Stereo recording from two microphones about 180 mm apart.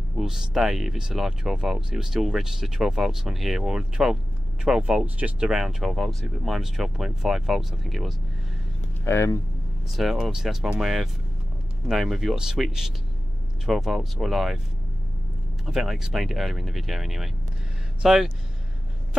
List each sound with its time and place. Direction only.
0.2 s speech: 5° right (ahead or behind)
9.0 s speech: 15° left (ahead or behind)
9.9 s speech: centre (ahead or behind)
15.6 s speech: centre (ahead or behind)